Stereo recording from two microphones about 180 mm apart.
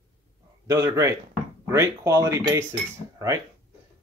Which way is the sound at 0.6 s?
15° right (ahead or behind).